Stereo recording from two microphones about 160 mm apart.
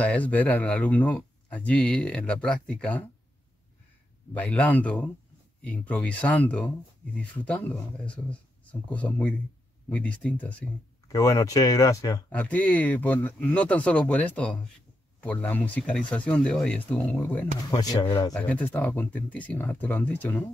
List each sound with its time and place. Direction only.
0.0 s speech: 10° left (ahead or behind)
4.3 s speech: 10° left (ahead or behind)
8.9 s speech: 10° left (ahead or behind)
11.1 s speech: 20° left (ahead or behind)
12.3 s speech: 10° left (ahead or behind)
17.6 s speech: 25° left (ahead or behind)